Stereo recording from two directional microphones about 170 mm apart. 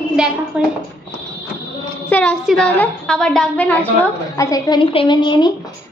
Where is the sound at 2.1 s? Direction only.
5° left (ahead or behind).